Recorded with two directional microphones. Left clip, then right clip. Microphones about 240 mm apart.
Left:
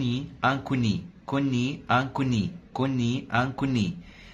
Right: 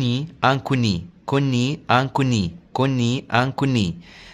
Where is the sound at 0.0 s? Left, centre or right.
Right.